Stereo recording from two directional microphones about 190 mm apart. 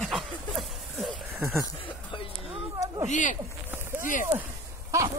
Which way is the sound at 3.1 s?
40° left (ahead or behind).